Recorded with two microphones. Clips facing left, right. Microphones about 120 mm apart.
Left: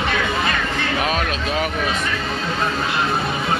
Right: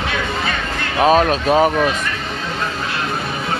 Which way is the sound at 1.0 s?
35° right (ahead or behind).